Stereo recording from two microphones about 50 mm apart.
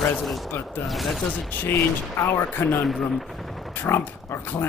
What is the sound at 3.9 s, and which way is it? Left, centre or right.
Speech, left.